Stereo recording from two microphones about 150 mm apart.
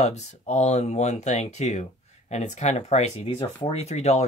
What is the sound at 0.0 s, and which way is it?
Speech, 50° left (ahead or behind).